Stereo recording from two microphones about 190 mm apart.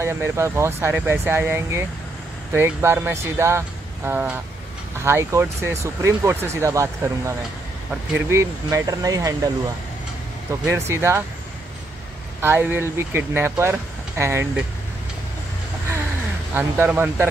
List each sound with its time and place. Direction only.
0.0 s speech: 15° right (ahead or behind)
10.9 s speech: 15° right (ahead or behind)
12.4 s speech: 10° right (ahead or behind)
16.5 s speech: 10° right (ahead or behind)